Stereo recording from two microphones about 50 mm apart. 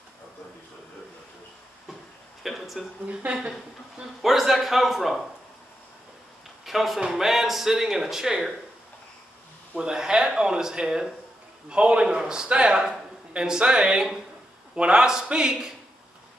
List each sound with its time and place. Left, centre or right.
2.4 s a sound: centre
3.3 s speech: right
4.2 s a man's voice: centre
6.6 s speech: centre
9.8 s speech: centre